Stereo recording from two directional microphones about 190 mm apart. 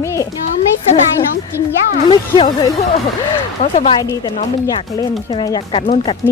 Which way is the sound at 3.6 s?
35° left (ahead or behind).